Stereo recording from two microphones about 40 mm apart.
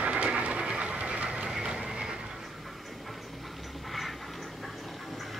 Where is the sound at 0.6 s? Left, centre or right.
Right.